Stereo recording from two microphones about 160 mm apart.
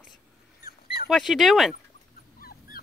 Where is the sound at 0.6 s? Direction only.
70° left (ahead or behind).